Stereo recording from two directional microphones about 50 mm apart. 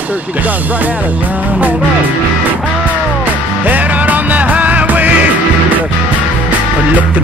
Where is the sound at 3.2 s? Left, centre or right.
Right.